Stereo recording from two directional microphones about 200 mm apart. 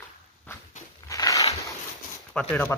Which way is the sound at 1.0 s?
15° left (ahead or behind).